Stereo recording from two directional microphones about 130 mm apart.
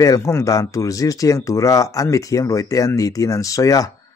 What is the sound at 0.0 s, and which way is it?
Speech, 25° left (ahead or behind).